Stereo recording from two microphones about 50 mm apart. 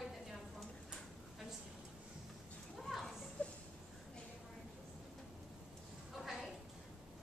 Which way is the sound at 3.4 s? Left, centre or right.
Left.